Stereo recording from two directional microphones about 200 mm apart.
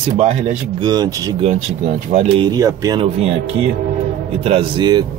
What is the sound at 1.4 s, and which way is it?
Speech, 35° right (ahead or behind).